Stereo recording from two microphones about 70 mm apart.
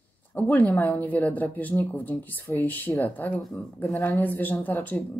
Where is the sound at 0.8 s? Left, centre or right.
Left.